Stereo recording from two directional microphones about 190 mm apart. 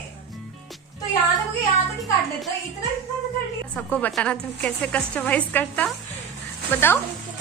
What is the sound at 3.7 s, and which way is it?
A woman's voice, 10° left (ahead or behind).